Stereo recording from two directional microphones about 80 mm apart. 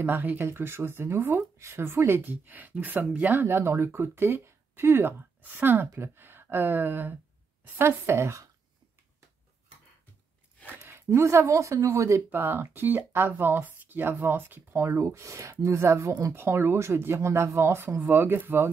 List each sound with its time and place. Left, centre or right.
0.0 s a woman's voice: right
8.1 s speech: right
10.7 s speech: right
12.3 s speech: right